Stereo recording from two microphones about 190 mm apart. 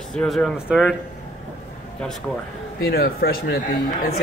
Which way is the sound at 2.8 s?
55° left (ahead or behind).